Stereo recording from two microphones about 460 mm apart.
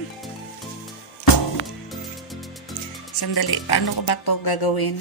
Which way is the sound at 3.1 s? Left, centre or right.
Left.